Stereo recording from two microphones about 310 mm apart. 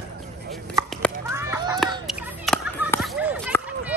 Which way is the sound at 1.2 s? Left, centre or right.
Centre.